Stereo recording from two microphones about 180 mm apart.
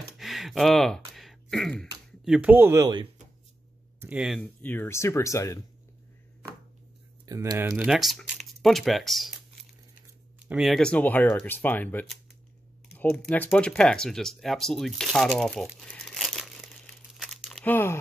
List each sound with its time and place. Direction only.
0.2 s a sound: centre (ahead or behind)
2.2 s speech: 5° right (ahead or behind)
4.0 s speech: 5° right (ahead or behind)
4.4 s speech: 10° left (ahead or behind)
7.2 s speech: 20° right (ahead or behind)
7.7 s speech: 5° right (ahead or behind)